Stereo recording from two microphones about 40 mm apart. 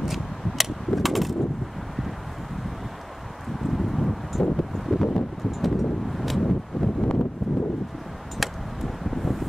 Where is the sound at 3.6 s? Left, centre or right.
Centre.